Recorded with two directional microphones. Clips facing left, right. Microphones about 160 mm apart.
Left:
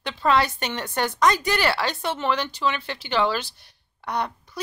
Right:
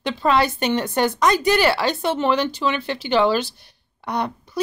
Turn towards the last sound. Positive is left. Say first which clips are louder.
# right 3 dB
turn(degrees=-15)  # may be behind; listen again after turning